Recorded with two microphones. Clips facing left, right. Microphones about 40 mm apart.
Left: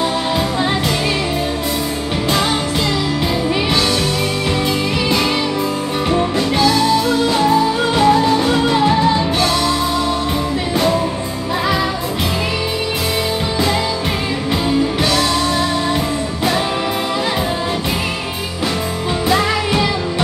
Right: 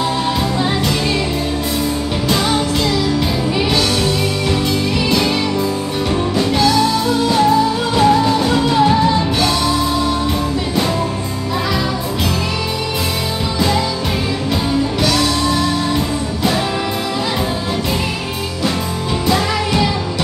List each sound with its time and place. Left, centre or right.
8.0 s music: centre
8.4 s music: centre
19.2 s music: left